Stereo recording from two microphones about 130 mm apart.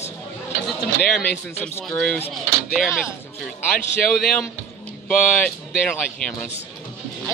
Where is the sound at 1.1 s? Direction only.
10° left (ahead or behind).